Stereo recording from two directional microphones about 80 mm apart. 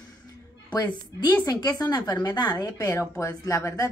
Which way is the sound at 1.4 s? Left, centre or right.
Left.